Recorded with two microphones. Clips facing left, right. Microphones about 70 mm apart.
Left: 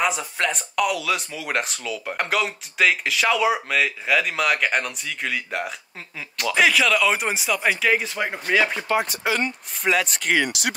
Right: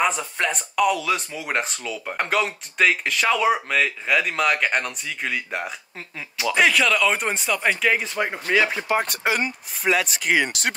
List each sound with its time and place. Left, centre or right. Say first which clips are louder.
0.0 s speech: right 1 dB; centre